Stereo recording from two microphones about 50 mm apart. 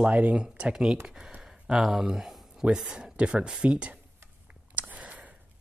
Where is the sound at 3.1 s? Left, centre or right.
Right.